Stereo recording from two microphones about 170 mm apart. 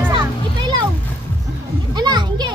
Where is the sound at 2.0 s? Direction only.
25° right (ahead or behind).